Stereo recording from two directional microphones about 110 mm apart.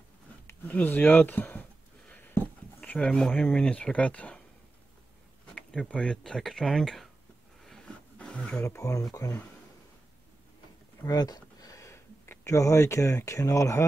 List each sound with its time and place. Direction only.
0.5 s speech: 15° left (ahead or behind)
2.0 s a sound: 15° left (ahead or behind)
5.5 s speech: 5° left (ahead or behind)
7.6 s a sound: 5° left (ahead or behind)
8.6 s speech: 30° left (ahead or behind)
11.0 s speech: 35° left (ahead or behind)